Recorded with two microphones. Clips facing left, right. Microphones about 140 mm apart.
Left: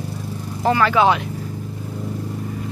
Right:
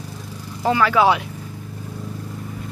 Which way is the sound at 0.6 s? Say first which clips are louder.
Left 1 dB; 10° right (ahead or behind).